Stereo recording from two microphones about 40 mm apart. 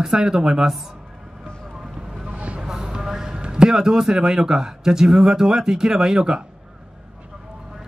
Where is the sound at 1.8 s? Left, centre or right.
Centre.